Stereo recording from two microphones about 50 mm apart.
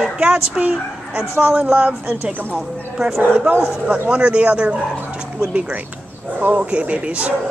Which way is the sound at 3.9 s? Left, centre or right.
Right.